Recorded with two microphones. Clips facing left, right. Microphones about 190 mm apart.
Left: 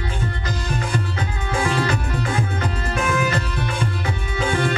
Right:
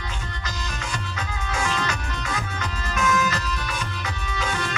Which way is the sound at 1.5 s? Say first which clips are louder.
Left 6 dB; 30° left (ahead or behind).